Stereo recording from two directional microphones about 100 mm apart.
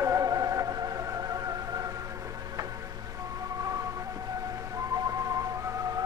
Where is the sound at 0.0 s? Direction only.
35° right (ahead or behind).